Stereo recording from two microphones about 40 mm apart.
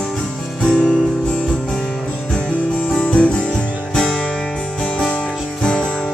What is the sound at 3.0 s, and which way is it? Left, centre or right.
Music, left.